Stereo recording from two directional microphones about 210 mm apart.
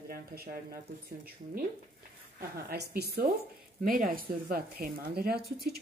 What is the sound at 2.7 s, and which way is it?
Speech, 50° right (ahead or behind).